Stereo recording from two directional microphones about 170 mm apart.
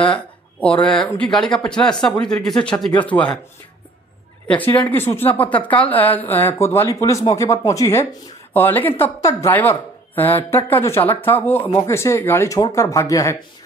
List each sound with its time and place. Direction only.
0.0 s a sound: 5° left (ahead or behind)
0.8 s speech: 5° left (ahead or behind)
4.5 s speech: 10° left (ahead or behind)